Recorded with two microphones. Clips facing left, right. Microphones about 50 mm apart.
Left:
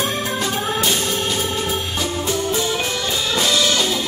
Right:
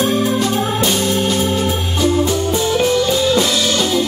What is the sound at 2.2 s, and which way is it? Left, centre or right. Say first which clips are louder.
Organ: right 5 dB; right.